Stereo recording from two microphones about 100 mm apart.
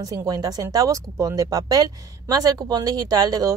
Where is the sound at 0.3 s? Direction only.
35° right (ahead or behind).